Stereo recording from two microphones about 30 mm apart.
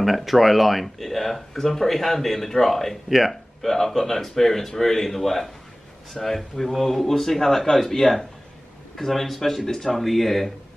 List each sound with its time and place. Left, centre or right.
0.0 s a man's voice: centre
3.1 s speech: centre
3.6 s a man's voice: centre
9.7 s a man's voice: centre
9.9 s speech: centre